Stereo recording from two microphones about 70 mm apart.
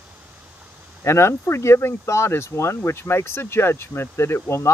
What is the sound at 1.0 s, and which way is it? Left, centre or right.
Speech, left.